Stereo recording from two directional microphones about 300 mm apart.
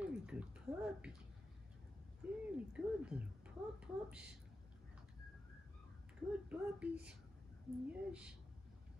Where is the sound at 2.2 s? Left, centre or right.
Centre.